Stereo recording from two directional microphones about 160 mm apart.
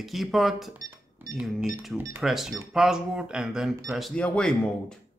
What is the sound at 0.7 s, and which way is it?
Cash register, 20° right (ahead or behind).